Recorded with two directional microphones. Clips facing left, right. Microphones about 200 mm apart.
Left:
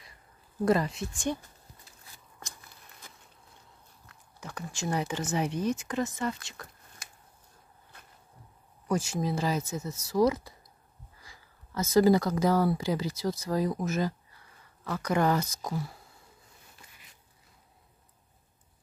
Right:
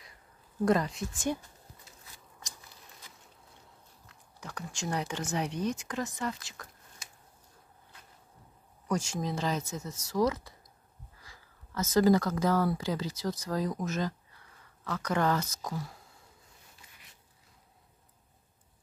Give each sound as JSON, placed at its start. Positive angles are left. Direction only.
{"t": 0.7, "sound": "speech", "side_deg": 5}
{"t": 4.4, "sound": "speech", "side_deg": 5}
{"t": 8.8, "sound": "speech", "side_deg": 5}